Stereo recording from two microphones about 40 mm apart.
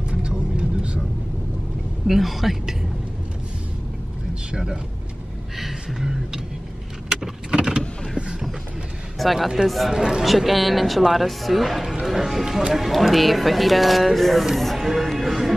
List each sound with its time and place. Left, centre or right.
0.2 s vehicle: right
2.0 s speech: centre
4.5 s speech: centre
5.6 s beatboxing: centre
9.2 s speech: centre
9.9 s speech: centre
10.2 s speech: centre
11.9 s speech: centre